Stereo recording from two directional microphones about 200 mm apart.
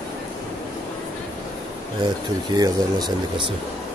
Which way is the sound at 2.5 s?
20° right (ahead or behind).